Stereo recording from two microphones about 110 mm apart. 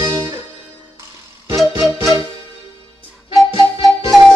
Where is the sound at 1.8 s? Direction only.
30° right (ahead or behind).